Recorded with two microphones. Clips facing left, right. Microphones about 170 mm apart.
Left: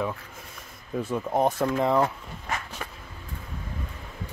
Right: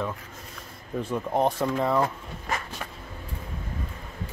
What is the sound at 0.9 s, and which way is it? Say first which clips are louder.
Speech: even; 5° left (ahead or behind).